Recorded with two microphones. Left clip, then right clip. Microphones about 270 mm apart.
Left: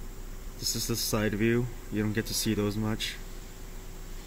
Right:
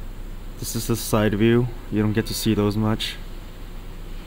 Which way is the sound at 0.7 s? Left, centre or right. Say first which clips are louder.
Right 10 dB; centre.